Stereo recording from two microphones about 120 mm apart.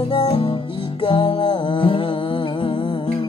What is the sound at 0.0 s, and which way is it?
Music, 45° left (ahead or behind).